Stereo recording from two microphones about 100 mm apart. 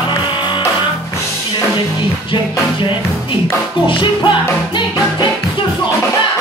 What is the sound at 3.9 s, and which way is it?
Music, 55° left (ahead or behind).